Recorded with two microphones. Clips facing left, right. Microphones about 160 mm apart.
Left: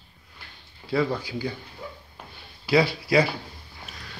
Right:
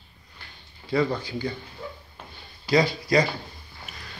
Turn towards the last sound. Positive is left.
turn(degrees=5)  # may be behind; listen again after turning